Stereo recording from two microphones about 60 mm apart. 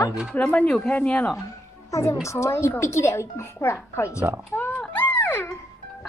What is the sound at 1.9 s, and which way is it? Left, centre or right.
A woman's voice, left.